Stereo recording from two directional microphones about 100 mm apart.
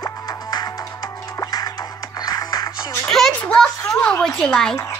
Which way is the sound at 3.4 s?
10° left (ahead or behind).